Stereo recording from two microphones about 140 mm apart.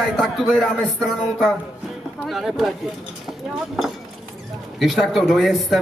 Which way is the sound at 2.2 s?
Centre (ahead or behind).